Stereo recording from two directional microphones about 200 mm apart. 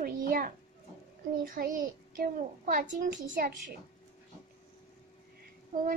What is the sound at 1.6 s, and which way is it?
A child's voice, 45° right (ahead or behind).